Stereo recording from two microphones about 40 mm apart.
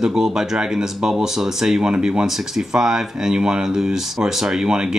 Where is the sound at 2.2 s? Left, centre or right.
Centre.